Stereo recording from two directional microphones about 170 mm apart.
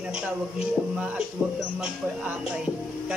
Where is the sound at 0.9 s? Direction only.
5° right (ahead or behind).